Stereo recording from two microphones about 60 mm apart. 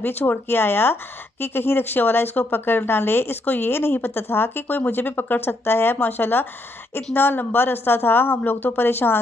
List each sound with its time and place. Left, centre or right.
0.0 s a woman's voice: left